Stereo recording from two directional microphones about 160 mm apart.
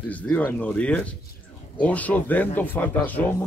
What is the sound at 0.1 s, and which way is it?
Speech, 10° left (ahead or behind).